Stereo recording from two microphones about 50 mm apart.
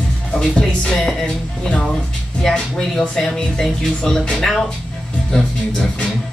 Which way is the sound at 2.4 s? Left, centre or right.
Centre.